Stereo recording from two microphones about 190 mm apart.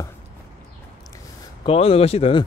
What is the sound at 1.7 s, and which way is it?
Speech, 30° left (ahead or behind).